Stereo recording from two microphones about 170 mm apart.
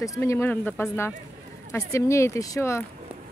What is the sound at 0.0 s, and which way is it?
Speech, 20° left (ahead or behind).